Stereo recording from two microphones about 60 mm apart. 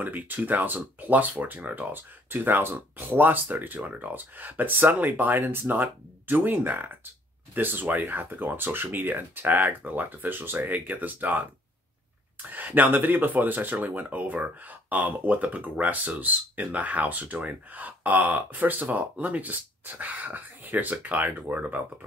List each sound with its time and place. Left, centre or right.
0.0 s speech: right